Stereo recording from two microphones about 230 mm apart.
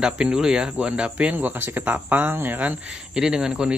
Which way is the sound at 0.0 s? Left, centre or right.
Centre.